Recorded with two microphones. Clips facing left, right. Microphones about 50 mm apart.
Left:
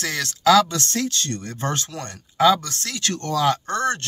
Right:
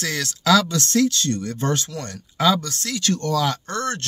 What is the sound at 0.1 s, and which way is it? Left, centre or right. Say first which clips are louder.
Speech: left 2 dB; left.